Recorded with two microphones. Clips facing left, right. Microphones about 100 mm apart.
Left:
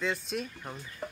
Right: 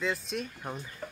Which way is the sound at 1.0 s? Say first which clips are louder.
Left 4 dB; 20° left (ahead or behind).